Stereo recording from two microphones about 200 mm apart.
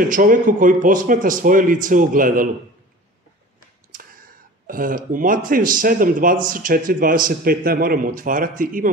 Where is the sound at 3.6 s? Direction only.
45° right (ahead or behind).